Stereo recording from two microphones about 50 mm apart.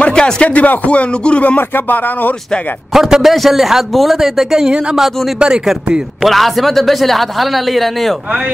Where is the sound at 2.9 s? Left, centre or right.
Centre.